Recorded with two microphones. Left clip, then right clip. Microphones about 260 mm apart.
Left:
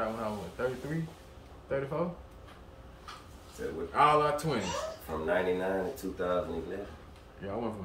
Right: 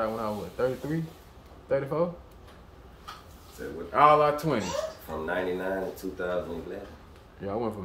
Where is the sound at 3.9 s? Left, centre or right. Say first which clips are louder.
Right 5 dB; centre.